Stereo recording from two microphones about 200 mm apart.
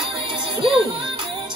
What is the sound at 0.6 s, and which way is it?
Music, 25° right (ahead or behind).